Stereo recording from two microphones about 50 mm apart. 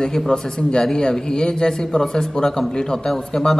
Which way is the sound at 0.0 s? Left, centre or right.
Centre.